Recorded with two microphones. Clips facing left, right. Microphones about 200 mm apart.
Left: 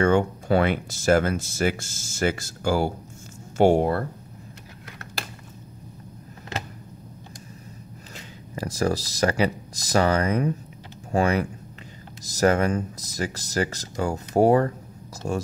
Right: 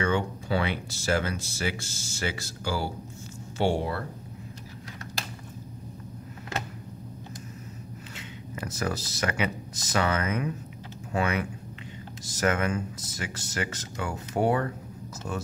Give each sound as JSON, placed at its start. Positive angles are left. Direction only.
{"t": 0.0, "sound": "speech", "side_deg": 50}
{"t": 8.5, "sound": "speech", "side_deg": 35}